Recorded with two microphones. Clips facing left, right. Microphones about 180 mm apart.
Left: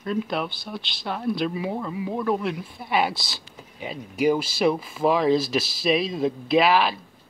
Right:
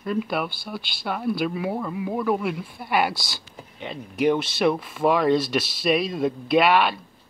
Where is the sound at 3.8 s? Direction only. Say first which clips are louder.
Even; 5° left (ahead or behind).